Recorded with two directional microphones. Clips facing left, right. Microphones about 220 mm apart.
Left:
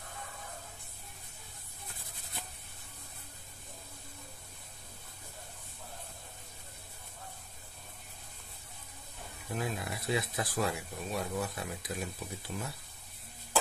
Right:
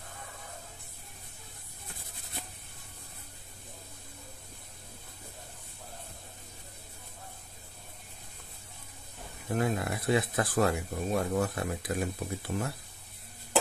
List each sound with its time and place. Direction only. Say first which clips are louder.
9.5 s speech: right 7 dB; 55° right (ahead or behind)